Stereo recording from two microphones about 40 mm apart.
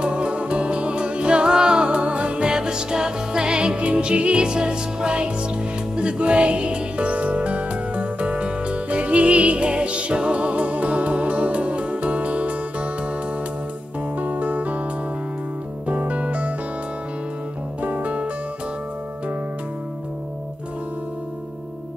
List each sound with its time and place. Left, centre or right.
0.0 s music: right
14.1 s music: right
15.9 s music: right
17.8 s music: right